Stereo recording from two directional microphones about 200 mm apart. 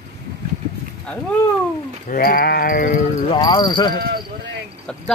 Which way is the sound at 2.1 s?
45° left (ahead or behind).